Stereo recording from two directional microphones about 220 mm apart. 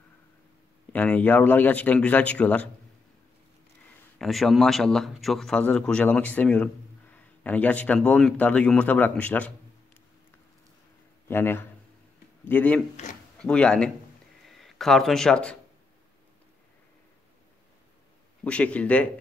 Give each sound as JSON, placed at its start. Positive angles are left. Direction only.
{"t": 0.9, "sound": "speech", "side_deg": 5}
{"t": 4.2, "sound": "speech", "side_deg": 0}
{"t": 11.2, "sound": "speech", "side_deg": 10}
{"t": 13.0, "sound": "a sound", "side_deg": 35}
{"t": 13.4, "sound": "speech", "side_deg": 5}
{"t": 18.4, "sound": "speech", "side_deg": 5}